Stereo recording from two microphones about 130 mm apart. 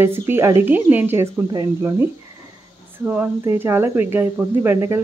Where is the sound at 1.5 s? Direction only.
30° right (ahead or behind).